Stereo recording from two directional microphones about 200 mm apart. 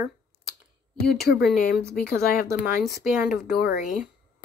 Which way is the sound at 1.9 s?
50° left (ahead or behind).